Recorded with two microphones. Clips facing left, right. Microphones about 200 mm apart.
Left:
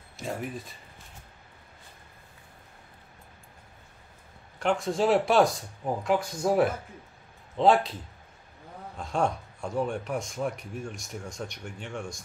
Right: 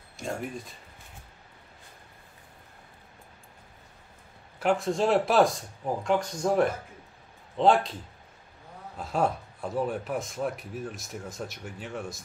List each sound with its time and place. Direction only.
0.2 s speech: centre (ahead or behind)
4.6 s speech: 5° right (ahead or behind)